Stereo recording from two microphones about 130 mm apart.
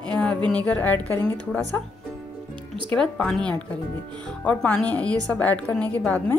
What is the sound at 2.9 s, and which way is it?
A woman's voice, 5° left (ahead or behind).